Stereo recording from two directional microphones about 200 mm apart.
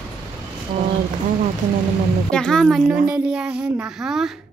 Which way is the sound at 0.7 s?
50° right (ahead or behind).